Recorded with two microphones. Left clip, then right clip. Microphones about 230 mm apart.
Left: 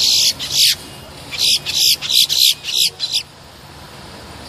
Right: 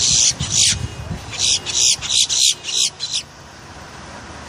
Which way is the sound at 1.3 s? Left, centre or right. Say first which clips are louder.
Left 3 dB; centre.